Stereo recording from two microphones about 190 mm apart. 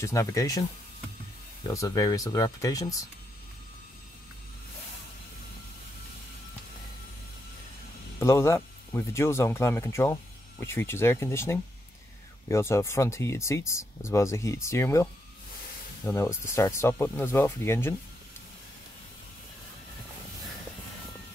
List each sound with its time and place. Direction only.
0.0 s speech: 15° left (ahead or behind)
1.7 s speech: 15° left (ahead or behind)
8.2 s speech: 15° left (ahead or behind)
16.1 s speech: 15° left (ahead or behind)